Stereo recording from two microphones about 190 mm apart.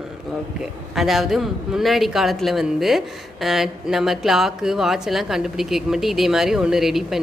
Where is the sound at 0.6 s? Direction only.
Centre (ahead or behind).